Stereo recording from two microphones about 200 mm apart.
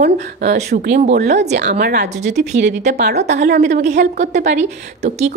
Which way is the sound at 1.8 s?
55° right (ahead or behind).